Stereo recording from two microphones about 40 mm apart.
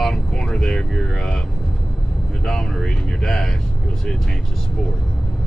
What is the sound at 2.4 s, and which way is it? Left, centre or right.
Speech, centre.